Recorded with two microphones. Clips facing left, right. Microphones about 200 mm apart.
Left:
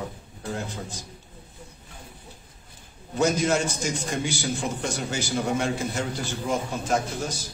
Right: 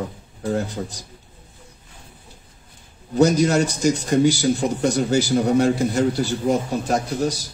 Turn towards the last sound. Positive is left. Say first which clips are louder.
# right 8 dB
turn(degrees=-35)  # may be behind; listen again after turning